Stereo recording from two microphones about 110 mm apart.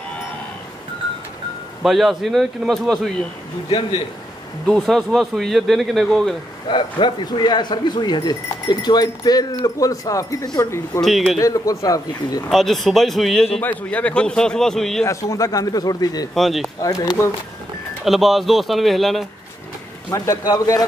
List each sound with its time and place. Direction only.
1.8 s speech: centre (ahead or behind)
4.6 s speech: centre (ahead or behind)
6.7 s speech: 45° left (ahead or behind)
11.0 s speech: centre (ahead or behind)
11.3 s speech: 30° left (ahead or behind)
12.4 s speech: centre (ahead or behind)
13.6 s a man's voice: 15° left (ahead or behind)
15.0 s speech: 30° left (ahead or behind)
16.3 s speech: centre (ahead or behind)
16.8 s speech: 35° left (ahead or behind)
18.0 s speech: centre (ahead or behind)
20.1 s speech: 30° left (ahead or behind)